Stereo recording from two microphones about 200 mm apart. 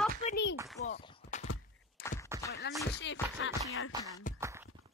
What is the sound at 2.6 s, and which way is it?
Music, 55° left (ahead or behind).